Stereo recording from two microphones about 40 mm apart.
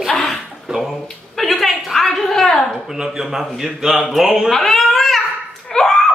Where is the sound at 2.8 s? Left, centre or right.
Centre.